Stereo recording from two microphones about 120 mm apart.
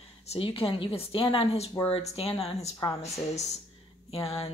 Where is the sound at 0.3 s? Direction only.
50° left (ahead or behind).